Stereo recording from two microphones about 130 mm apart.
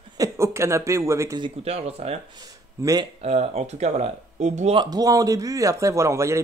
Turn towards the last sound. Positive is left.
turn(degrees=-20)  # may be behind; listen again after turning